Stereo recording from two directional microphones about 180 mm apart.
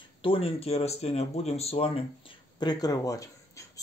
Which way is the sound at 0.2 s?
30° left (ahead or behind).